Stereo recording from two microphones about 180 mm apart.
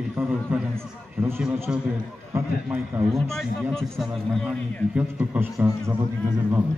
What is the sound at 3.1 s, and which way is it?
A man's voice, centre (ahead or behind).